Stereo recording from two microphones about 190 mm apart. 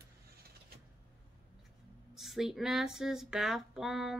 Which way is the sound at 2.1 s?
Centre (ahead or behind).